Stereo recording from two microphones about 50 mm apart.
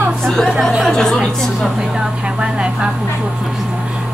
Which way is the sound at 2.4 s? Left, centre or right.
Centre.